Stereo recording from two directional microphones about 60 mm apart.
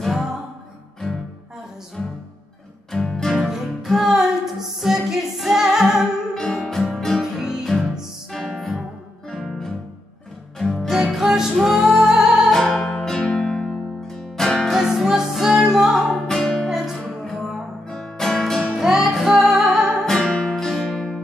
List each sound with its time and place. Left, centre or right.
0.0 s music: centre
2.9 s music: centre
3.4 s music: centre
6.3 s music: centre
7.2 s music: centre
8.3 s music: centre
12.4 s music: centre
16.3 s music: centre
16.6 s music: centre
17.8 s music: centre
18.8 s music: centre
20.1 s music: centre